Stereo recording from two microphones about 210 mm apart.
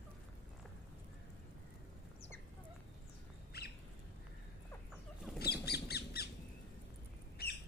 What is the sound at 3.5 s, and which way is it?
Bird, 50° left (ahead or behind).